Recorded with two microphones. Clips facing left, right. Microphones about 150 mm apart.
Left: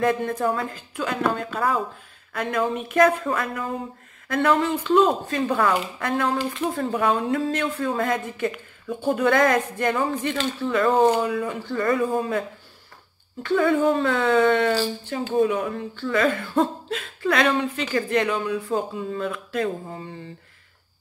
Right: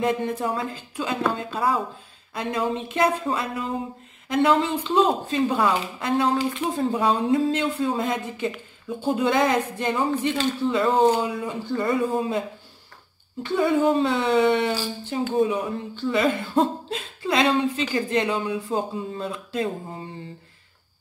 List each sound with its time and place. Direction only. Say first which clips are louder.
0.4 s speech: left 2 dB; 20° right (ahead or behind)